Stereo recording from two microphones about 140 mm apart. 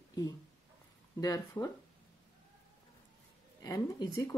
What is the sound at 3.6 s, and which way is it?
Speech, 25° left (ahead or behind).